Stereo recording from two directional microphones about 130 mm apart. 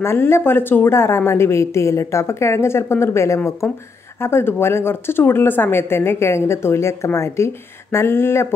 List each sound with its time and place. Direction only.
0.0 s a woman's voice: 20° left (ahead or behind)